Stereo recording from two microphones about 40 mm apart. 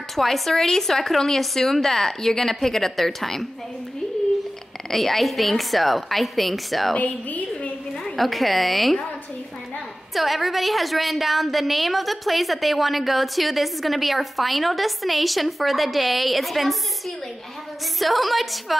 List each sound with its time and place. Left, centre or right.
0.1 s a woman's voice: centre
4.9 s a woman's voice: centre
7.0 s a woman's voice: left
8.2 s a woman's voice: centre
10.1 s a woman's voice: centre
17.9 s a woman's voice: centre